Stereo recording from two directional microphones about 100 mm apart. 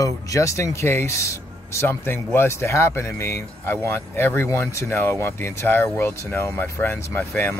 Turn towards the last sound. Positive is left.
turn(degrees=20)  # may be behind; listen again after turning